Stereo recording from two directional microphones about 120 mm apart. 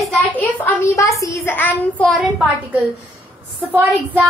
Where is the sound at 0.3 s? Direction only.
15° left (ahead or behind).